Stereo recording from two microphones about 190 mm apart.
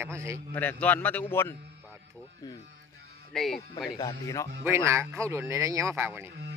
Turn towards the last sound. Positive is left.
turn(degrees=-10)  # may be behind; listen again after turning